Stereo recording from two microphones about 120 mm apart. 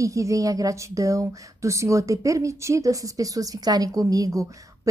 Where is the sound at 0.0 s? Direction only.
25° right (ahead or behind).